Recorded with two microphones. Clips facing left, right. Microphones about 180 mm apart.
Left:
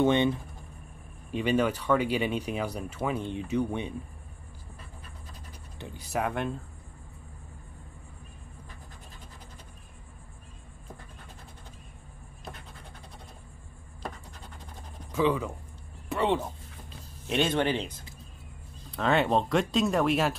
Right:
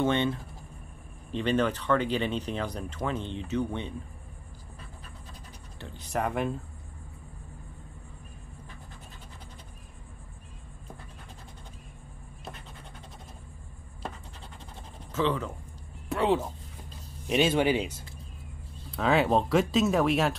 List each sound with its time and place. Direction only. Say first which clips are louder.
0.0 s speech: left 3 dB; 15° left (ahead or behind)
5.8 s speech: left 2 dB; 15° left (ahead or behind)
6.1 s speech: right 1 dB; centre (ahead or behind)
15.1 s speech: left 2 dB; 10° left (ahead or behind)
16.1 s speech: right 1 dB; centre (ahead or behind)